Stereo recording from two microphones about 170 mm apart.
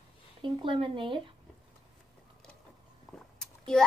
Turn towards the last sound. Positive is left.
turn(degrees=5)  # may be behind; listen again after turning